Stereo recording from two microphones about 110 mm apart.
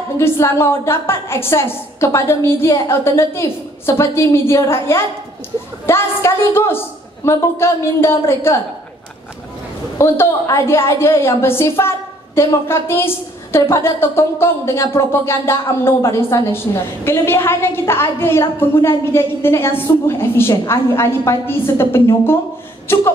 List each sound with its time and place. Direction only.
0.2 s a woman's voice: 25° left (ahead or behind)
9.9 s a woman's voice: 25° left (ahead or behind)